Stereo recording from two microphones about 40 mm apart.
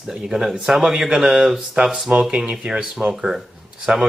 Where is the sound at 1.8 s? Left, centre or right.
Centre.